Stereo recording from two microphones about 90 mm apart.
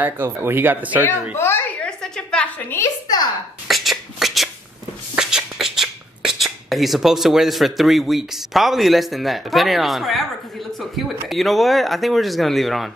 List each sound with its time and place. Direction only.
0.0 s speech: 25° right (ahead or behind)
1.3 s a sound: 25° left (ahead or behind)
1.8 s a sound: 10° left (ahead or behind)
2.8 s speech: 30° left (ahead or behind)
3.6 s shuffling cards: centre (ahead or behind)
5.1 s speech: 5° right (ahead or behind)